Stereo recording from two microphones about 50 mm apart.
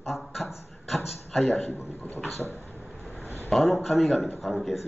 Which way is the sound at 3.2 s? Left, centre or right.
Left.